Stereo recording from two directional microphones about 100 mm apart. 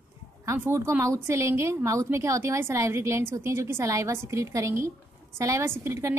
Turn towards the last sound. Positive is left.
turn(degrees=-30)  # may be behind; listen again after turning